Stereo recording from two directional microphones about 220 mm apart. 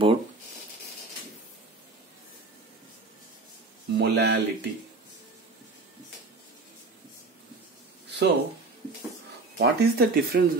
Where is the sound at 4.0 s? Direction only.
50° right (ahead or behind).